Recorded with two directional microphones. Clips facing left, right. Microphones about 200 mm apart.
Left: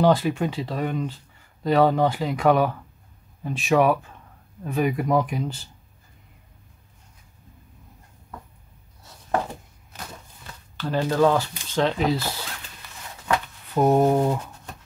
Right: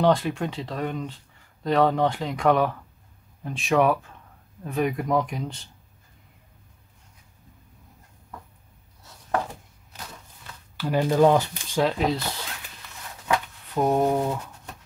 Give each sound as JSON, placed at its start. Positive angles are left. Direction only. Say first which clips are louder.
{"t": 0.0, "sound": "speech", "louder": "left 2 dB", "side_deg": 5}
{"t": 10.8, "sound": "speech", "louder": "right 1 dB", "side_deg": -15}
{"t": 11.8, "sound": "speech", "louder": "left 1 dB", "side_deg": 0}
{"t": 13.9, "sound": "speech", "louder": "left 3 dB", "side_deg": 15}